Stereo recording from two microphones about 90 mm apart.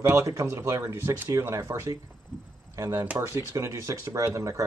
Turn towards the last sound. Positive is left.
turn(degrees=-35)  # may be behind; listen again after turning